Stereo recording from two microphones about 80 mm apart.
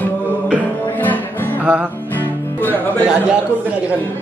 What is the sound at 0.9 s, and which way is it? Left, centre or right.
Music, left.